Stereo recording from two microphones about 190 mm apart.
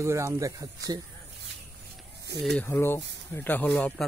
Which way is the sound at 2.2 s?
65° right (ahead or behind).